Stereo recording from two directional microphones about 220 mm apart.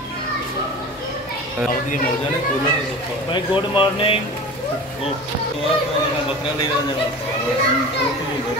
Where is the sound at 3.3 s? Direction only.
20° left (ahead or behind).